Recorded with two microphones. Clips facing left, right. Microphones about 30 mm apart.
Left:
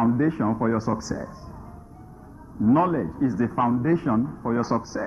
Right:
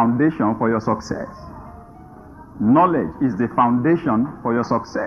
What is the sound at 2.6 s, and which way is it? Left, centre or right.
A woman's voice, centre.